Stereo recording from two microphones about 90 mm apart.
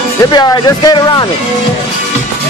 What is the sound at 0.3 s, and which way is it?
Speech, 45° left (ahead or behind).